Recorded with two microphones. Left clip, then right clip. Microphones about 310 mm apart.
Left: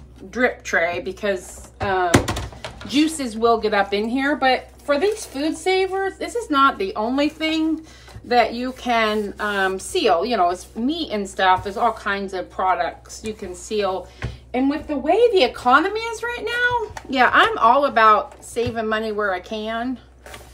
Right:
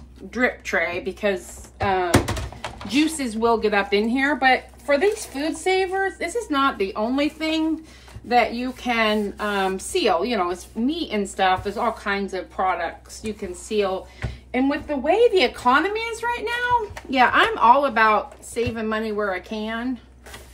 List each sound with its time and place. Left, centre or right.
0.3 s a woman's voice: centre